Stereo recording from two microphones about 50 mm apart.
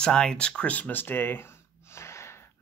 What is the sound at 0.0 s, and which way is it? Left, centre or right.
Speech, centre.